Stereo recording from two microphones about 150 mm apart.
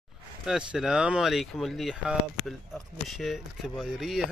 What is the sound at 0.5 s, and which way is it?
Speech, 5° right (ahead or behind).